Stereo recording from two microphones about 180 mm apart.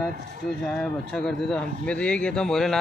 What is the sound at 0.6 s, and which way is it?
Speech, 5° left (ahead or behind).